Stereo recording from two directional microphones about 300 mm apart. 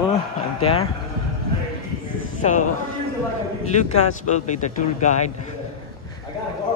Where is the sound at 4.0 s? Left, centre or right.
Left.